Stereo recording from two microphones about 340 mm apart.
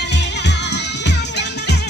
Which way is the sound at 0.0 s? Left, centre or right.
Left.